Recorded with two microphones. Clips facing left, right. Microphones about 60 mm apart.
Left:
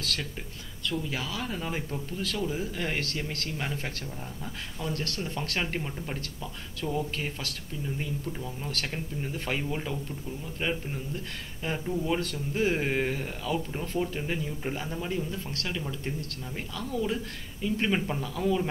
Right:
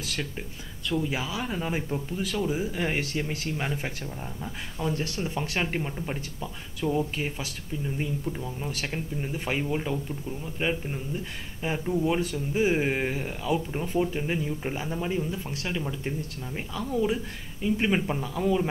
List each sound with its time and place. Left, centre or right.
0.0 s speech: centre